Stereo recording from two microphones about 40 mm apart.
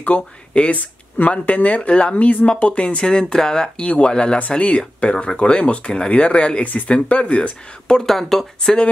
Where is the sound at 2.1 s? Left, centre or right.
Left; by 3.7 s centre.